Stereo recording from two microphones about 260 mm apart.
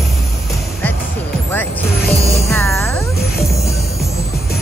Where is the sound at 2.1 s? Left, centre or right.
Left.